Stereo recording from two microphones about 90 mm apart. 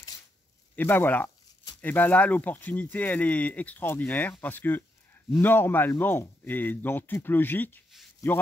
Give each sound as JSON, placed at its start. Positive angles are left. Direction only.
{"t": 0.7, "sound": "speech", "side_deg": 20}